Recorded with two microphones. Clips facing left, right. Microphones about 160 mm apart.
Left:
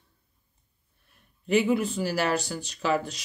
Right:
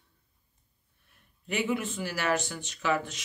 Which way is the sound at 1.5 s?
35° left (ahead or behind).